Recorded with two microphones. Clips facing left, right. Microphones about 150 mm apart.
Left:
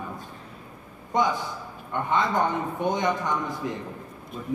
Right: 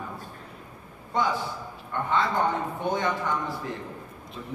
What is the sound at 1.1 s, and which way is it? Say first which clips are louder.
A man's voice: left 2 dB; 20° left (ahead or behind).